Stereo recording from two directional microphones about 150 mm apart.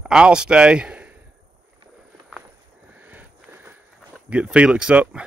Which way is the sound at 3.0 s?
10° right (ahead or behind).